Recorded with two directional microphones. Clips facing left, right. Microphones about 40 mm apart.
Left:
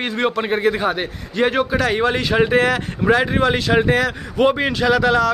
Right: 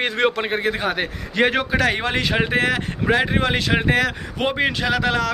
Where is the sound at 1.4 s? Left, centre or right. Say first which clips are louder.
Left 1 dB; right.